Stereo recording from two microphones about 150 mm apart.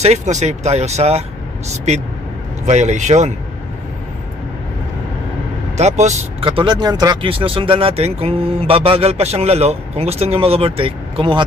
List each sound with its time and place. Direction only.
0.0 s speech: 50° right (ahead or behind)
2.6 s speech: 50° right (ahead or behind)
5.8 s speech: 50° right (ahead or behind)
6.4 s speech: 35° right (ahead or behind)